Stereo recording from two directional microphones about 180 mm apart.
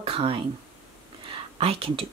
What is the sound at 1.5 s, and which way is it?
Speech, 30° right (ahead or behind).